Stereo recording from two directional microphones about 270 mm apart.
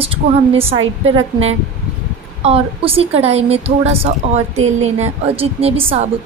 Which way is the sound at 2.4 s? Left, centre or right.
Right.